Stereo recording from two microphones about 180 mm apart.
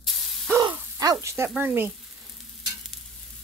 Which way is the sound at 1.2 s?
15° right (ahead or behind).